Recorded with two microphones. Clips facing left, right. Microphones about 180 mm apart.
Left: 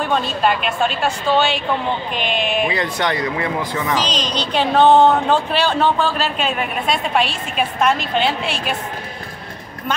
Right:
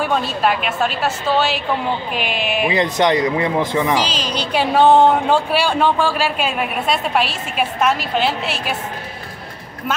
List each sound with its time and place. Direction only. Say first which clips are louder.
0.0 s a woman's voice: even; 5° right (ahead or behind)
2.7 s speech: right 5 dB; 20° right (ahead or behind)
3.9 s a woman's voice: right 1 dB; 5° right (ahead or behind)